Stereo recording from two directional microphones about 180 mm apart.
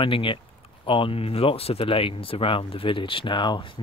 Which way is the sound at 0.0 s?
30° left (ahead or behind).